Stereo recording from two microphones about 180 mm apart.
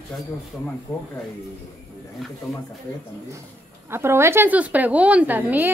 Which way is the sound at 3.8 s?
15° right (ahead or behind).